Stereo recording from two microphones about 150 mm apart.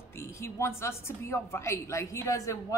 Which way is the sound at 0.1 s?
15° left (ahead or behind).